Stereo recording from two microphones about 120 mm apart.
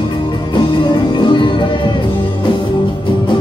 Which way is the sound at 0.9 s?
40° left (ahead or behind).